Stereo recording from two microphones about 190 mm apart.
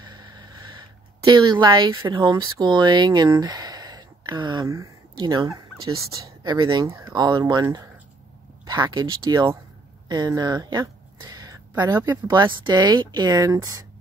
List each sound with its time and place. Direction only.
0.7 s speech: 25° right (ahead or behind)